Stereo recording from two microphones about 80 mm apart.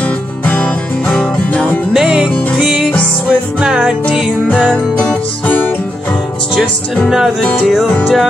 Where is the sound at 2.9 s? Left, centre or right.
Centre.